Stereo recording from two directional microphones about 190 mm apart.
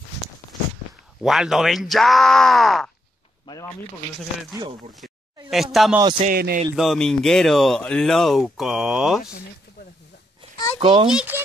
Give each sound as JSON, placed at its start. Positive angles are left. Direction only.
{"t": 1.2, "sound": "speech", "side_deg": 0}
{"t": 3.4, "sound": "speech", "side_deg": 20}
{"t": 5.5, "sound": "speech", "side_deg": 0}
{"t": 6.2, "sound": "speech", "side_deg": -50}
{"t": 6.7, "sound": "speech", "side_deg": 0}
{"t": 10.8, "sound": "a child's voice", "side_deg": -25}
{"t": 11.1, "sound": "speech", "side_deg": -5}